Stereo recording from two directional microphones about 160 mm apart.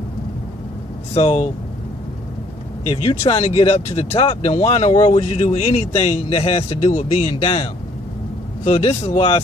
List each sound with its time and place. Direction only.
1.1 s speech: 45° left (ahead or behind)
3.3 s speech: 40° left (ahead or behind)